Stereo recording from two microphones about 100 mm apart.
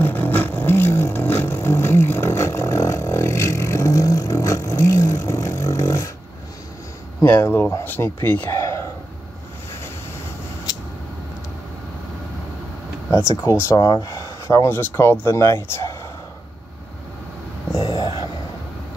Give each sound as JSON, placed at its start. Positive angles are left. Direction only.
{"t": 0.0, "sound": "vehicle", "side_deg": 20}
{"t": 7.2, "sound": "speech", "side_deg": 25}
{"t": 13.4, "sound": "speech", "side_deg": 30}
{"t": 13.7, "sound": "speech", "side_deg": 40}
{"t": 17.7, "sound": "a sound", "side_deg": 45}